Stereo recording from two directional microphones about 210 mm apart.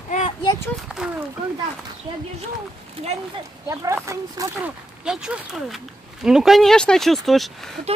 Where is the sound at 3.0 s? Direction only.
30° right (ahead or behind).